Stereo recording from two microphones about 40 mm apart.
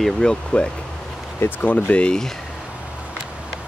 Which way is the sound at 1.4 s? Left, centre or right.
Left.